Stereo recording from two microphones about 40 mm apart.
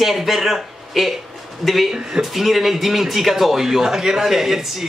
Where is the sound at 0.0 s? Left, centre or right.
Centre.